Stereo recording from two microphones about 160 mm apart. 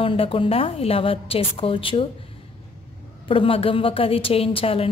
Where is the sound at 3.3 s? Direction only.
35° left (ahead or behind).